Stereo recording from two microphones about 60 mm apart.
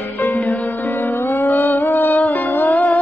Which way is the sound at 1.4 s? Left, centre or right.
Left.